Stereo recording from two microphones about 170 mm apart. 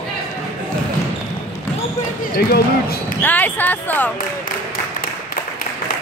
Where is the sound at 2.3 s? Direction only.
65° left (ahead or behind).